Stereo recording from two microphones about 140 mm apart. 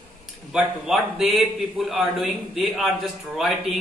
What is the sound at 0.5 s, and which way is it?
A man's voice, centre (ahead or behind).